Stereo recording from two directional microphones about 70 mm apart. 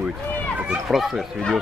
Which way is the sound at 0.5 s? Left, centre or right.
Centre.